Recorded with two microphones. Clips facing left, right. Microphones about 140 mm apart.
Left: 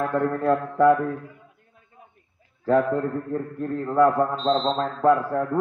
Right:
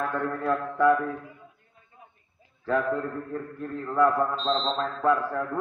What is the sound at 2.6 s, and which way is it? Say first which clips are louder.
A man's voice: left 5 dB; 35° left (ahead or behind).